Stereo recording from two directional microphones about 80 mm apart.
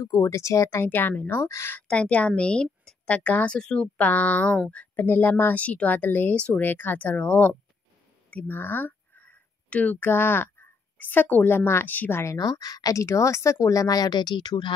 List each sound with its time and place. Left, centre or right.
0.0 s speech: left
0.8 s speech: left
1.8 s a woman's voice: centre
3.1 s speech: centre
4.9 s speech: left
12.4 s speech: left